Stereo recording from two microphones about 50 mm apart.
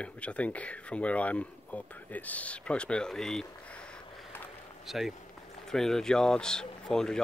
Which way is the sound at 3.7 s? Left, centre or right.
Left.